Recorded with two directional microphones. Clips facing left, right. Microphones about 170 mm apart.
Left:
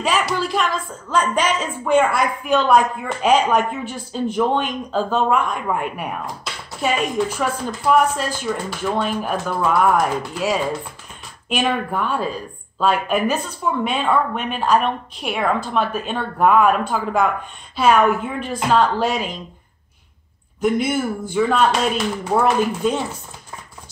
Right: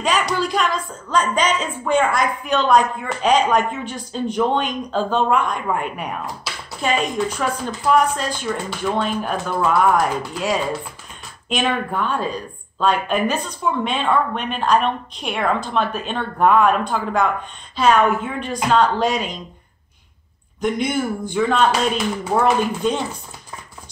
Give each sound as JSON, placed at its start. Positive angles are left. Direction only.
{"t": 0.0, "sound": "speech", "side_deg": 5}
{"t": 11.4, "sound": "speech", "side_deg": 5}
{"t": 20.6, "sound": "speech", "side_deg": 5}